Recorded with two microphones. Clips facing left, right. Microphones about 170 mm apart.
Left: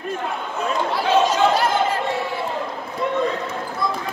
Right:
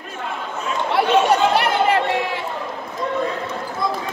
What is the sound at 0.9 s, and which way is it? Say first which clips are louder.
Chatter: right 3 dB; 65° right (ahead or behind).